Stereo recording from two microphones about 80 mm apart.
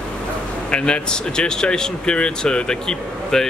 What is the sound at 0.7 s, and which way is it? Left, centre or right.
Speech, centre.